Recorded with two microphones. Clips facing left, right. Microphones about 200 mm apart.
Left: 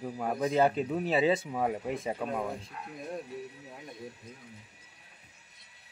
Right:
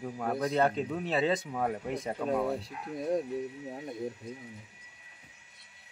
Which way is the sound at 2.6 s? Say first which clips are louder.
Right 6 dB; 40° right (ahead or behind).